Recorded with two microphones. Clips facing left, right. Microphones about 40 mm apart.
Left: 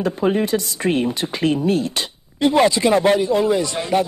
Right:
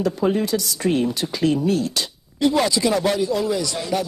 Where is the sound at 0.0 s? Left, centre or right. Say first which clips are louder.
Left 1 dB; left.